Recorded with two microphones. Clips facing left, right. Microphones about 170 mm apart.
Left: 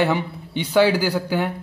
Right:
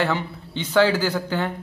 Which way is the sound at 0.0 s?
15° left (ahead or behind).